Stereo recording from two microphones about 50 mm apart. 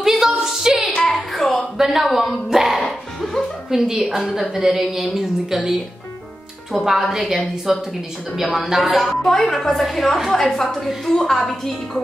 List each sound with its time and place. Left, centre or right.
0.0 s music: centre
1.1 s a sound: centre
1.8 s a woman's voice: centre
4.2 s a woman's voice: centre
4.6 s a woman's voice: centre